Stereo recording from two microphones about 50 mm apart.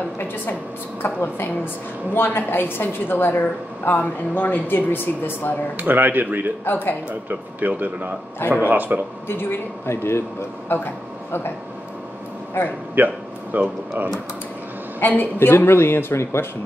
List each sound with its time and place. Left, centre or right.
1.0 s a woman's voice: left
5.8 s speech: right
6.6 s speech: left
7.1 s speech: right
8.4 s a woman's voice: left
8.6 s speech: right
9.3 s speech: left
10.7 s a woman's voice: left
12.6 s a woman's voice: left
12.9 s speech: right
15.0 s a woman's voice: left